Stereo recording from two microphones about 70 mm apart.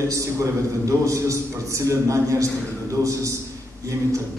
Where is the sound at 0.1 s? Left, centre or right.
Right.